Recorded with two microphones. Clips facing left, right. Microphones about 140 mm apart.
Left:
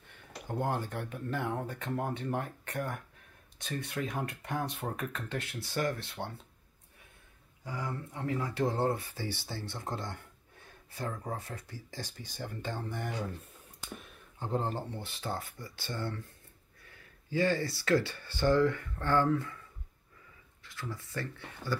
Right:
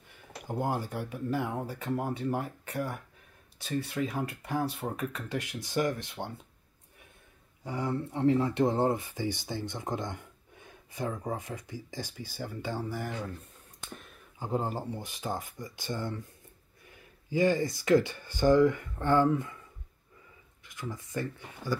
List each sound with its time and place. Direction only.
0.5 s speech: 10° right (ahead or behind)
7.6 s speech: 25° right (ahead or behind); by 13.1 s 5° right (ahead or behind)
13.7 s a sound: 5° left (ahead or behind)
14.4 s speech: 10° right (ahead or behind)
17.3 s speech: 15° right (ahead or behind)
20.6 s speech: 15° right (ahead or behind)